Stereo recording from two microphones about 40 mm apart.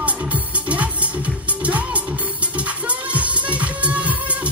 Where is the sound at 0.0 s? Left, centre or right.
Right.